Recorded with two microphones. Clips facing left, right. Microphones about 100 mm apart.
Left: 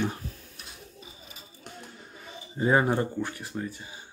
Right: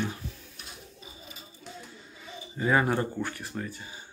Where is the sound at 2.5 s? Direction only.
25° left (ahead or behind).